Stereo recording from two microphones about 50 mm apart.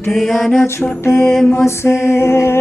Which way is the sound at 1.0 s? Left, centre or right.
Left.